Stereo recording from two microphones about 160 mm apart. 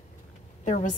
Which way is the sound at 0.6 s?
50° left (ahead or behind).